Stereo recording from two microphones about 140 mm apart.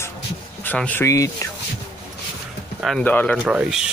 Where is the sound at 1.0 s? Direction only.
20° left (ahead or behind).